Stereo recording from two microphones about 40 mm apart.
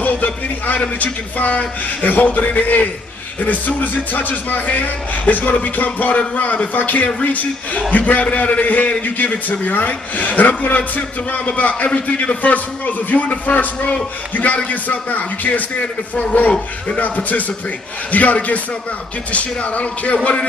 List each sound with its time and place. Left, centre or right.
0.0 s a man's voice: left